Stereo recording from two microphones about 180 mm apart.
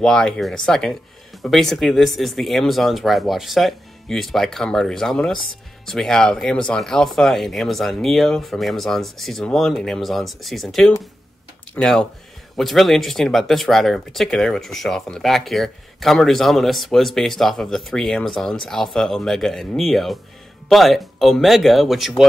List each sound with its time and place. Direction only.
0.0 s speech: centre (ahead or behind)